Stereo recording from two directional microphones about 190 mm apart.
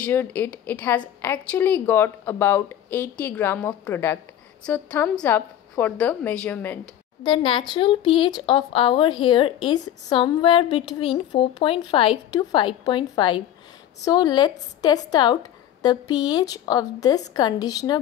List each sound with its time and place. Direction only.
0.0 s speech: 10° left (ahead or behind)
7.2 s a woman's voice: 25° left (ahead or behind)